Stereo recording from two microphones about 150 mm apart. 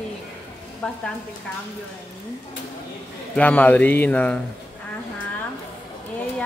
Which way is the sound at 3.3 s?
10° left (ahead or behind).